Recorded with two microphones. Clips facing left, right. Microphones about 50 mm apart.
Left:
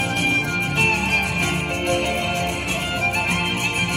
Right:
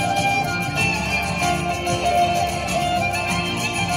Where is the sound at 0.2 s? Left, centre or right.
Left.